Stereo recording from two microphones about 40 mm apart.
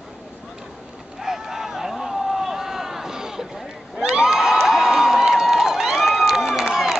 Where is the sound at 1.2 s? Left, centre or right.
Centre.